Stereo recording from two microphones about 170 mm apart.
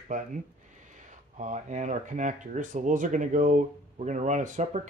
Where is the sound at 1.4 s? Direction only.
45° right (ahead or behind).